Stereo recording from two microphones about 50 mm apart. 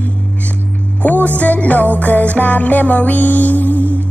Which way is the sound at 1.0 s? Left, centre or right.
Left.